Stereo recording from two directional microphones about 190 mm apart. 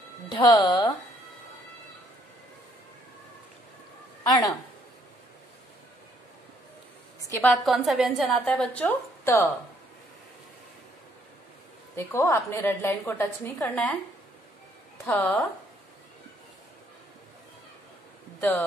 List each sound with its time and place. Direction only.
0.3 s speech: 20° left (ahead or behind)
4.3 s speech: 20° left (ahead or behind)
7.2 s a sound: 15° left (ahead or behind)
7.6 s a woman's voice: centre (ahead or behind)
11.9 s a woman's voice: 15° left (ahead or behind)
15.0 s a woman's voice: 10° left (ahead or behind)
18.4 s a woman's voice: 10° left (ahead or behind)